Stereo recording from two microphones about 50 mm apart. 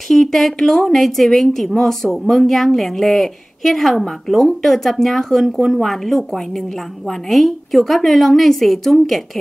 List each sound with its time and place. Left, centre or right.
0.1 s a woman's voice: centre